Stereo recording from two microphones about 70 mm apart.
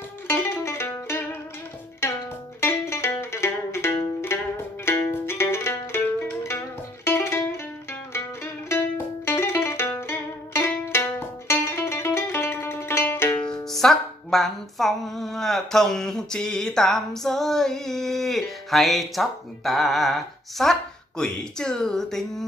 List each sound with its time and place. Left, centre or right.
0.3 s mandolin: left
2.6 s music: left
7.1 s music: left
8.6 s music: left
13.7 s music: centre
21.2 s speech: centre